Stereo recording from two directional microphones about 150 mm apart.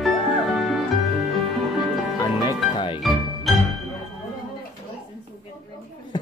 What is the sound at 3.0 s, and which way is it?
Music, centre (ahead or behind).